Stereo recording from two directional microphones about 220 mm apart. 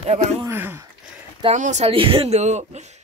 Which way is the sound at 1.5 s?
35° right (ahead or behind).